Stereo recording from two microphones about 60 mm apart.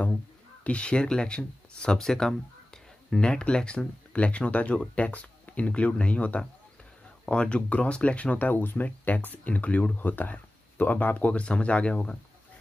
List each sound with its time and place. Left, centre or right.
0.7 s speech: centre